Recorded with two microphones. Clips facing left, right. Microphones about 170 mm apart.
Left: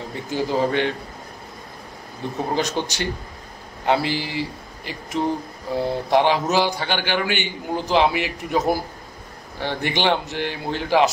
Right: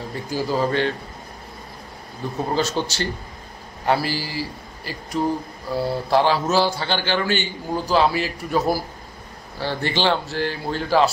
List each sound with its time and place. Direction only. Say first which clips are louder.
0.1 s a man's voice: left 1 dB; 20° left (ahead or behind)
2.5 s a man's voice: right 1 dB; 15° left (ahead or behind)